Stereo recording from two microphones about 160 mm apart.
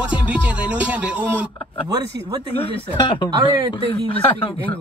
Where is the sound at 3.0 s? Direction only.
30° left (ahead or behind).